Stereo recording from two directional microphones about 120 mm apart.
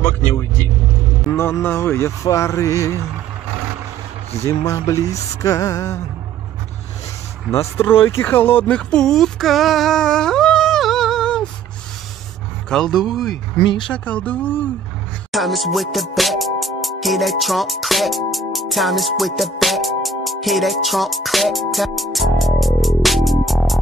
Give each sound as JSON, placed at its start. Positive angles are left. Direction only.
{"t": 0.0, "sound": "speech", "side_deg": 20}
{"t": 4.4, "sound": "speech", "side_deg": 25}
{"t": 7.5, "sound": "speech", "side_deg": 20}
{"t": 12.6, "sound": "speech", "side_deg": 5}
{"t": 13.8, "sound": "speech", "side_deg": 10}
{"t": 15.3, "sound": "speech", "side_deg": 0}